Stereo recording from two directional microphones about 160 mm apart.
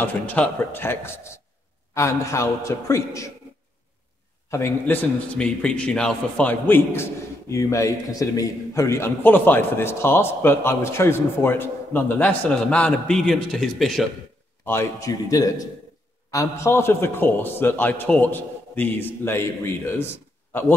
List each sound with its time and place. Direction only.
0.0 s a man's voice: 10° left (ahead or behind)
4.5 s a man's voice: 15° left (ahead or behind)
14.6 s a man's voice: 15° left (ahead or behind)